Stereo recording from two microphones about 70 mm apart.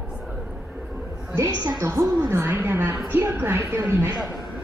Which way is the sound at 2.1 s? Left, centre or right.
Right.